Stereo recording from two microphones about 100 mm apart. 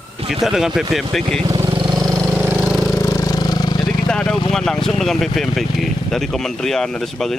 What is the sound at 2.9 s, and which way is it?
Vehicle, 35° left (ahead or behind).